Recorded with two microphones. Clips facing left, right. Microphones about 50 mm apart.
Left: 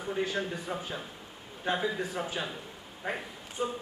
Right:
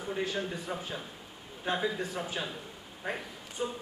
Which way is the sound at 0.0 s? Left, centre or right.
Centre.